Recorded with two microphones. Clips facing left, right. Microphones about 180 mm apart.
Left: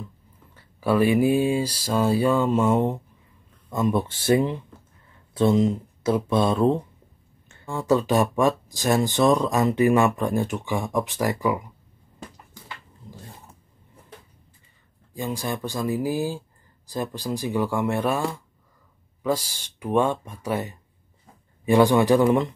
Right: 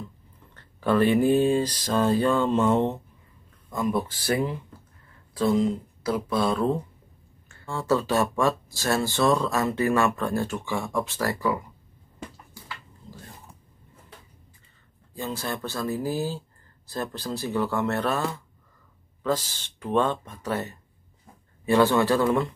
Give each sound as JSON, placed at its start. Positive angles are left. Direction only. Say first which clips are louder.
{"t": 0.6, "sound": "speech", "louder": "left 1 dB", "side_deg": 10}
{"t": 3.7, "sound": "speech", "louder": "left 3 dB", "side_deg": 25}
{"t": 12.6, "sound": "dog", "louder": "even", "side_deg": 20}
{"t": 15.1, "sound": "speech", "louder": "left 3 dB", "side_deg": 15}